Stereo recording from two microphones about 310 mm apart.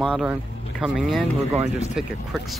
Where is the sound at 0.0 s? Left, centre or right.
Centre.